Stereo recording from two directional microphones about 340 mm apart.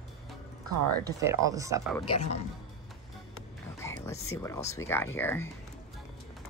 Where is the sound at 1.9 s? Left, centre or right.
Centre.